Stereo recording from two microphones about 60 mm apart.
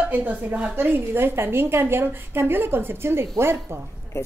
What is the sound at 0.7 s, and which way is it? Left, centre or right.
A woman's voice, right.